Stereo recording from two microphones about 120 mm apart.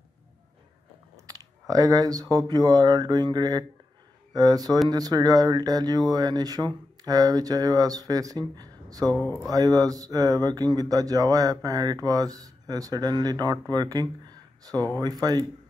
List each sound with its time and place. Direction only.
1.2 s speech: 30° right (ahead or behind)